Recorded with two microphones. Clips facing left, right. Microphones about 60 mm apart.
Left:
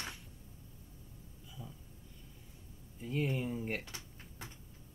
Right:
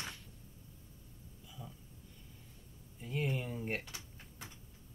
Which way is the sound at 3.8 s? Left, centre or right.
Left.